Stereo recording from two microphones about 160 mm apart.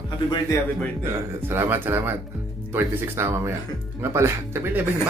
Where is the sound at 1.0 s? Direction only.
15° right (ahead or behind).